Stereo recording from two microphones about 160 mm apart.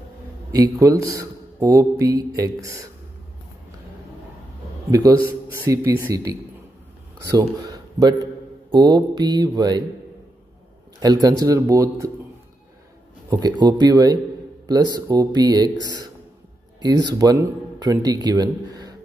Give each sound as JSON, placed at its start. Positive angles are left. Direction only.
{"t": 0.5, "sound": "speech", "side_deg": -20}
{"t": 5.5, "sound": "speech", "side_deg": -15}
{"t": 7.6, "sound": "a sound", "side_deg": -25}
{"t": 8.7, "sound": "speech", "side_deg": -25}
{"t": 11.0, "sound": "speech", "side_deg": -25}
{"t": 13.3, "sound": "speech", "side_deg": -25}